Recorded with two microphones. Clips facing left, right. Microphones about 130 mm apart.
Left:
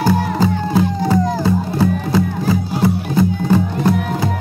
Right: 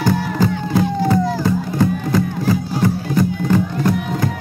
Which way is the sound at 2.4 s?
15° left (ahead or behind).